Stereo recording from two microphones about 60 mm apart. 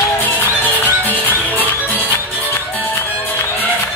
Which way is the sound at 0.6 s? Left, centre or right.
Left.